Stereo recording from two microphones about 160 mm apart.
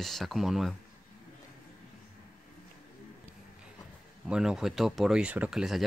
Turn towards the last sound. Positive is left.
turn(degrees=0)  # may be behind; listen again after turning